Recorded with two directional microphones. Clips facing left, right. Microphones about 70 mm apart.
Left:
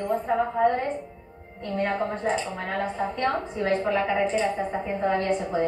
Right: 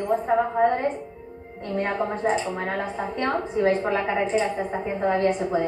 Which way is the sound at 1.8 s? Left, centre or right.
Centre.